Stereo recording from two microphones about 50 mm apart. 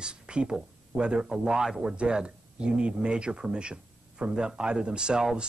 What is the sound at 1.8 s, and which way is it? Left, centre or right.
Speech, right.